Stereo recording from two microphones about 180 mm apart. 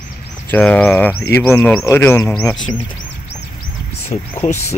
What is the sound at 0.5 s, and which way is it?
Speech, 10° left (ahead or behind).